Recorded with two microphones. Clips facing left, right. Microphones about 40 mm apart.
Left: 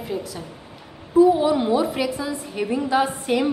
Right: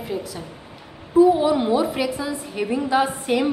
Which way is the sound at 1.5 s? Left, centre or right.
Right.